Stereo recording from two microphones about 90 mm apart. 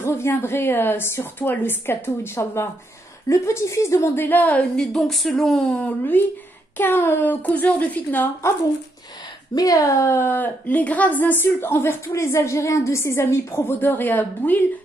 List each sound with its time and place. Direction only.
0.0 s a woman's voice: 30° left (ahead or behind)
4.7 s speech: centre (ahead or behind)
5.8 s a woman's voice: 20° left (ahead or behind)
9.6 s a woman's voice: 40° left (ahead or behind); by 14.7 s 20° left (ahead or behind)